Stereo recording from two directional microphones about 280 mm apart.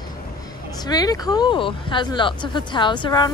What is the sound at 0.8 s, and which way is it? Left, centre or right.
Speech, centre.